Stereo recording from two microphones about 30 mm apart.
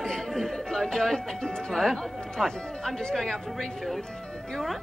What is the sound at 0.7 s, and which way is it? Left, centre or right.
Speech, centre.